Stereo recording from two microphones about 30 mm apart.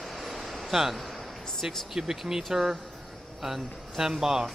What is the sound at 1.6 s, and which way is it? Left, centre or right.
Speech, centre.